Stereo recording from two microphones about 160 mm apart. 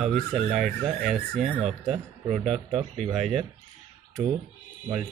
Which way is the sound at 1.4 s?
40° right (ahead or behind).